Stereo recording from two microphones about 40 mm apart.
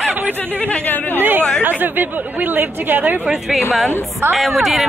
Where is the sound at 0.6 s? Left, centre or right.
Left.